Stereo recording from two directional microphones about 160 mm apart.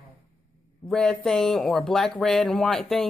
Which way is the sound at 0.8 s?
5° left (ahead or behind).